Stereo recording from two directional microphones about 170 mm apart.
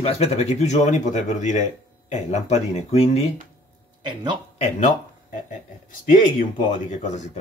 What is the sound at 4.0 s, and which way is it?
Speech, 25° right (ahead or behind).